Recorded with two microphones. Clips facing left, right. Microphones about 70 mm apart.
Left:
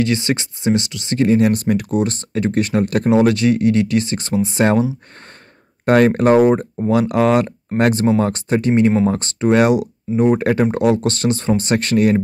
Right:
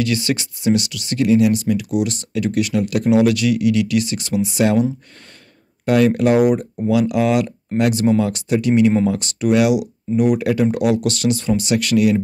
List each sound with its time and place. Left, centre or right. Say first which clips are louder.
0.0 s speech: left 2 dB; left
5.9 s speech: left 2 dB; left